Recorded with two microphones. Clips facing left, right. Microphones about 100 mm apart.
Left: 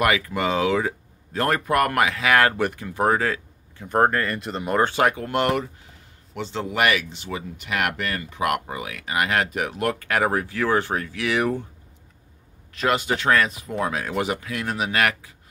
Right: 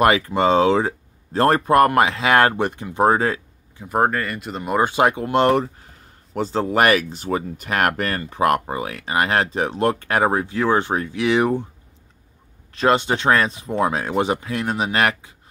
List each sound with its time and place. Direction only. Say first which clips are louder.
0.0 s speech: right 5 dB; 30° right (ahead or behind)
3.7 s speech: even; 5° right (ahead or behind)
12.7 s speech: right 5 dB; 30° right (ahead or behind)